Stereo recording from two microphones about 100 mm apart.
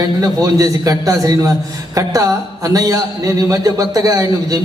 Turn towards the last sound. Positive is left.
turn(degrees=-35)  # may be behind; listen again after turning